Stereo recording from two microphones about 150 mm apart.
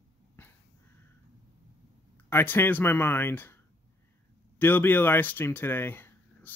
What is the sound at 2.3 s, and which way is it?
Speech, 15° left (ahead or behind).